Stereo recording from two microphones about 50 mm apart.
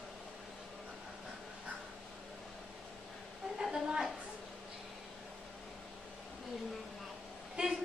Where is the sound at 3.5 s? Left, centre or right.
Centre.